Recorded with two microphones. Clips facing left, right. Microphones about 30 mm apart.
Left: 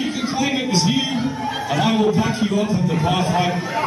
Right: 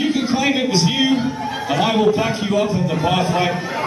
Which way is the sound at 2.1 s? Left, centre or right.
Right.